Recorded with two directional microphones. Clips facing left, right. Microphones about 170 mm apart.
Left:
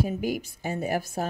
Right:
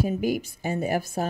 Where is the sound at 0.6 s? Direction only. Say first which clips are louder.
Right 2 dB; 20° right (ahead or behind).